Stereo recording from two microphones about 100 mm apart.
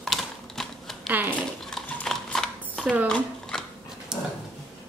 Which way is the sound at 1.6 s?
5° left (ahead or behind).